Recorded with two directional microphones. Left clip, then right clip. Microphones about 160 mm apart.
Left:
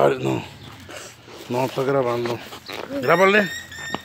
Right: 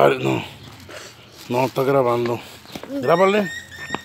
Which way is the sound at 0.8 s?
75° left (ahead or behind).